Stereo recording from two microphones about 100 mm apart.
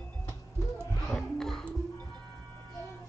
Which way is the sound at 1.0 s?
5° left (ahead or behind).